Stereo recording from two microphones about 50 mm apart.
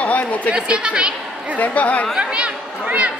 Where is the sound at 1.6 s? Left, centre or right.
Left.